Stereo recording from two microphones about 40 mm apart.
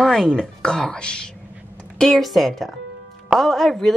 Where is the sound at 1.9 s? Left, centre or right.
Centre.